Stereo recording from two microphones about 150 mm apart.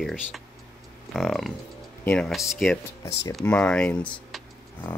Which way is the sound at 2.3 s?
Centre (ahead or behind).